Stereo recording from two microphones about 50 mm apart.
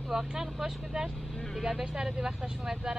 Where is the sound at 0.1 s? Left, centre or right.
Centre.